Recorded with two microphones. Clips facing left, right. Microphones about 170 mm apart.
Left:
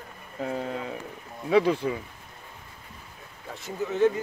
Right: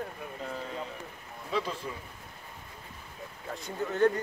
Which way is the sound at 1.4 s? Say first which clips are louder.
Left 11 dB; 70° left (ahead or behind).